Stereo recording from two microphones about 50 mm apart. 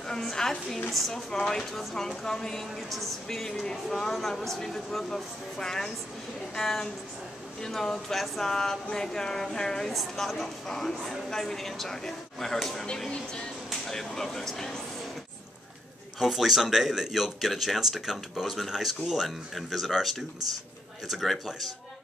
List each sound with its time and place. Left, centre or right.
0.1 s a woman's voice: centre
13.1 s speech: centre
13.7 s speech: centre
16.2 s speech: centre